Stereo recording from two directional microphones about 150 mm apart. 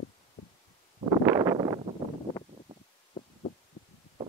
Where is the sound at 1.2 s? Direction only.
20° right (ahead or behind).